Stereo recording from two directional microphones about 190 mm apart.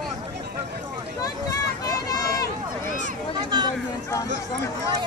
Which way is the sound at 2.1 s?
20° left (ahead or behind).